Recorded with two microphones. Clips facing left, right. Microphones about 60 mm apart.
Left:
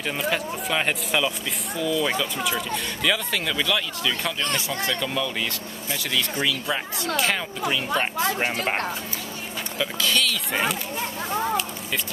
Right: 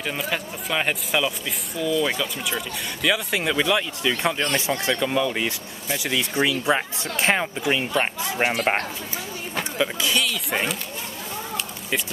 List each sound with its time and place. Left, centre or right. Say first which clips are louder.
0.0 s speech: left 1 dB; centre
9.8 s speech: even; centre